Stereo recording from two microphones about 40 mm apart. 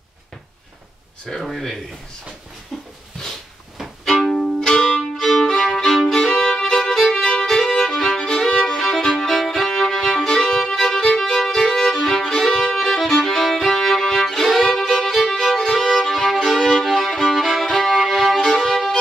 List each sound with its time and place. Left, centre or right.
1.4 s speech: centre
2.7 s dog: centre
4.0 s music: centre
5.1 s violin: centre
18.4 s violin: centre
18.7 s music: centre